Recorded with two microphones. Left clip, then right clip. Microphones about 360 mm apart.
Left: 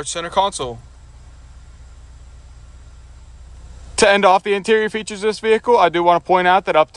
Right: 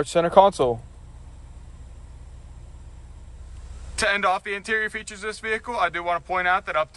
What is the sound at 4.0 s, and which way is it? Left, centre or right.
Speech, centre.